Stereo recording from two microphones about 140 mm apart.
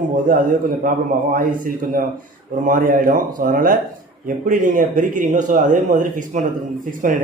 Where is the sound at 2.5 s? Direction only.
75° right (ahead or behind).